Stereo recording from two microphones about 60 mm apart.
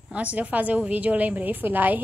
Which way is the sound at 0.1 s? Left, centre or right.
Right.